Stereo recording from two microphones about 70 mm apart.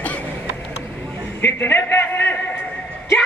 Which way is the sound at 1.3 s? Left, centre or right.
Left.